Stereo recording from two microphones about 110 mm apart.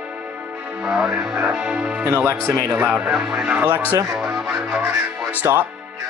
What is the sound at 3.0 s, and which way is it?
Speech, 10° right (ahead or behind).